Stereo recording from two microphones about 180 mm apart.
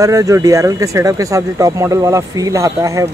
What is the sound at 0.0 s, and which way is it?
Speech, 20° right (ahead or behind).